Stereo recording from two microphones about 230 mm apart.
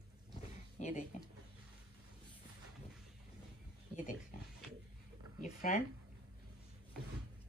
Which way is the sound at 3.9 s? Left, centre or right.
Left.